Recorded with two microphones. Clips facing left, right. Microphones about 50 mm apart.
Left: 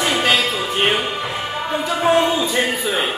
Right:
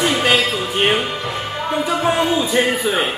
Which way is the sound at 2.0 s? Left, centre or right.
Centre.